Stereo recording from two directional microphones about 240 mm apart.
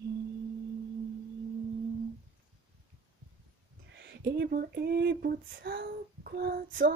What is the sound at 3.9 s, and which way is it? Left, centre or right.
Female singing, right.